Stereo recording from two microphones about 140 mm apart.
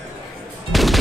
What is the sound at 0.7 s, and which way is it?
Music, centre (ahead or behind).